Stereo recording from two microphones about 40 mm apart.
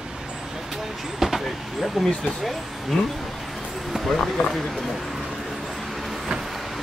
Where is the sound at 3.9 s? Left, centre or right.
Centre.